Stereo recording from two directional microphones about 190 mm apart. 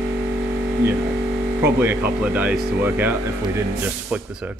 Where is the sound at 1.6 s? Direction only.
10° right (ahead or behind).